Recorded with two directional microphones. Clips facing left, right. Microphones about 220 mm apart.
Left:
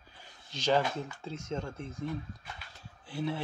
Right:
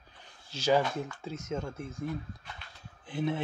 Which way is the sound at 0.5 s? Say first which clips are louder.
Right 2 dB; 10° right (ahead or behind).